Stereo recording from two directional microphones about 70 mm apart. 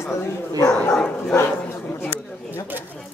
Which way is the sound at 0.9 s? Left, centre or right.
Centre.